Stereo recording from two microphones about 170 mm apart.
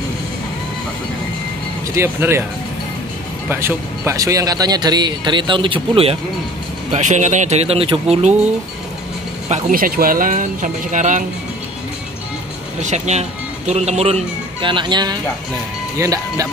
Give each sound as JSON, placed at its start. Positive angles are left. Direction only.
{"t": 2.0, "sound": "speech", "side_deg": -15}
{"t": 3.4, "sound": "speech", "side_deg": -15}
{"t": 6.9, "sound": "speech", "side_deg": -45}
{"t": 9.5, "sound": "speech", "side_deg": -55}
{"t": 12.8, "sound": "speech", "side_deg": -40}